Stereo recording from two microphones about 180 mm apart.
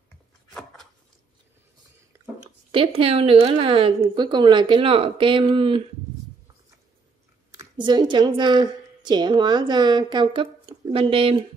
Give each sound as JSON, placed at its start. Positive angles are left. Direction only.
{"t": 2.7, "sound": "a woman's voice", "side_deg": -30}
{"t": 7.5, "sound": "a woman's voice", "side_deg": -25}